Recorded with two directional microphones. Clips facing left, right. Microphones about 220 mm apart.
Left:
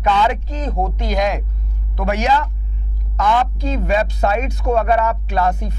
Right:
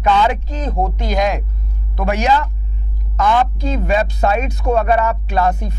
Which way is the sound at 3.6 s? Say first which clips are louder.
Right 1 dB; 10° right (ahead or behind).